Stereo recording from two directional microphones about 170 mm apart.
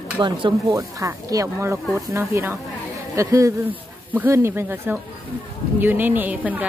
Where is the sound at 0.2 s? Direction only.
25° right (ahead or behind).